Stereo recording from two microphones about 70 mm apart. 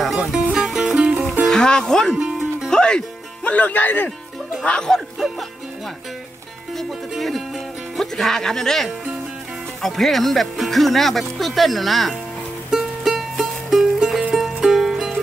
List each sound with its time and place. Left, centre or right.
0.0 s music: centre
1.4 s speech: centre
2.7 s music: centre
3.4 s speech: left
4.6 s speech: centre
6.8 s speech: centre
12.7 s music: centre